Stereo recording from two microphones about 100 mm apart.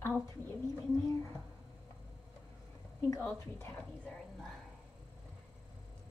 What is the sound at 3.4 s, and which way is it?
Speech, 25° left (ahead or behind).